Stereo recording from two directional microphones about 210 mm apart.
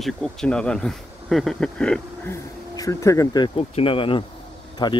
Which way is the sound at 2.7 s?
15° left (ahead or behind).